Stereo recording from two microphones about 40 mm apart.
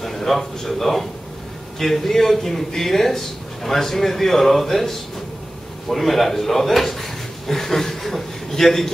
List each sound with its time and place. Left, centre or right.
0.0 s a man's voice: centre